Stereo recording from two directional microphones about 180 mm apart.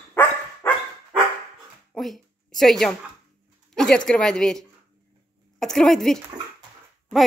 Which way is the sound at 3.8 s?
5° left (ahead or behind).